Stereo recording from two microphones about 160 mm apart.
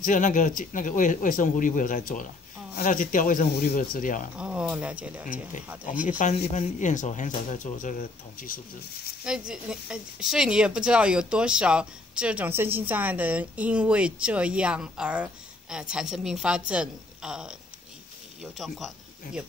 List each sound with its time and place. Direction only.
0.0 s speech: 50° left (ahead or behind)
4.4 s speech: 5° right (ahead or behind)
5.9 s speech: 55° left (ahead or behind)
9.5 s speech: 5° right (ahead or behind)